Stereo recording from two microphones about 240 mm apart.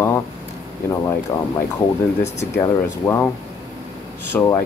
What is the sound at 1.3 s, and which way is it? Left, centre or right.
Speech, centre.